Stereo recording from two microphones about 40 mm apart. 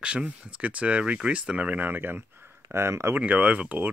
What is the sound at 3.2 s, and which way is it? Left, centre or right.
Speech, right.